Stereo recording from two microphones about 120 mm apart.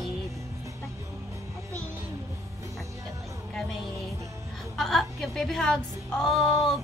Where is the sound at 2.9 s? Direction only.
25° right (ahead or behind).